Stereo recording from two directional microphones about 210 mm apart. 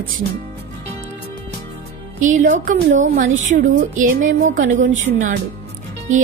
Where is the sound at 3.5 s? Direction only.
40° right (ahead or behind).